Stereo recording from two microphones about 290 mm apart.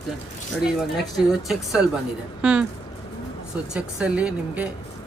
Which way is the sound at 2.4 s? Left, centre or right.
Centre.